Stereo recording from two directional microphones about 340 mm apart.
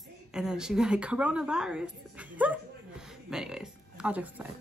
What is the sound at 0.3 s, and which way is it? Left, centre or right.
A woman's voice, centre.